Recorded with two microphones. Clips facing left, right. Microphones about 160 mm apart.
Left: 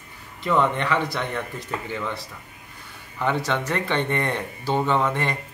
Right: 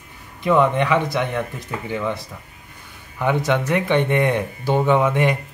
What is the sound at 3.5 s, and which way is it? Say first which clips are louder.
Speech: right 6 dB; 15° right (ahead or behind).